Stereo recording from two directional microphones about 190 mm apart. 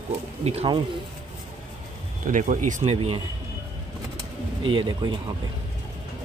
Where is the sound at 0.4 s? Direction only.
30° right (ahead or behind).